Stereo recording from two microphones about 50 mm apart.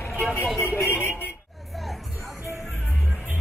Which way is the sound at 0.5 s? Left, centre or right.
Left.